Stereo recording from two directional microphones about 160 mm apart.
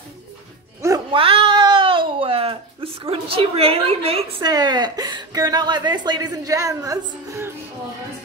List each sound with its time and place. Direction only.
1.1 s cat: 35° right (ahead or behind)
4.4 s speech: 25° right (ahead or behind)